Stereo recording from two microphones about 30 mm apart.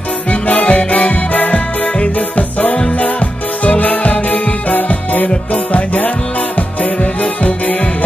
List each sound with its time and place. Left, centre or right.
0.3 s music: left